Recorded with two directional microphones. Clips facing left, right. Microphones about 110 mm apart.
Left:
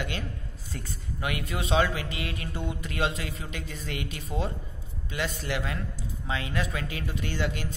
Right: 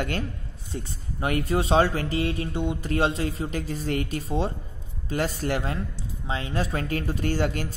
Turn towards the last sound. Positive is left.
turn(degrees=-45)  # may be behind; listen again after turning